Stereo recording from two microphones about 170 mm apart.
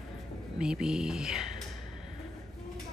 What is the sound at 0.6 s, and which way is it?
Speech, 5° right (ahead or behind).